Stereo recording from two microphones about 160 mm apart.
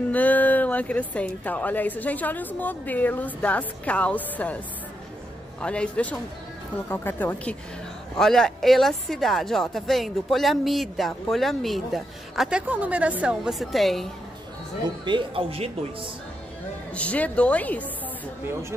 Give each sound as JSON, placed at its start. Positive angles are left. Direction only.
{"t": 0.1, "sound": "speech", "side_deg": 10}
{"t": 5.6, "sound": "speech", "side_deg": 5}
{"t": 15.0, "sound": "speech", "side_deg": -30}
{"t": 16.9, "sound": "speech", "side_deg": 10}